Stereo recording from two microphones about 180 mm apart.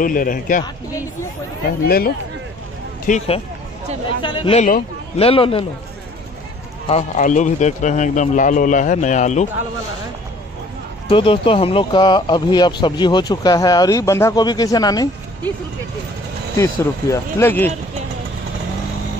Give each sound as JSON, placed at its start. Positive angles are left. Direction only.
{"t": 0.0, "sound": "a man's voice", "side_deg": 50}
{"t": 1.9, "sound": "speech", "side_deg": 55}
{"t": 3.1, "sound": "a man's voice", "side_deg": 40}
{"t": 6.9, "sound": "a man's voice", "side_deg": 40}
{"t": 11.1, "sound": "speech", "side_deg": 30}
{"t": 16.5, "sound": "speech", "side_deg": 15}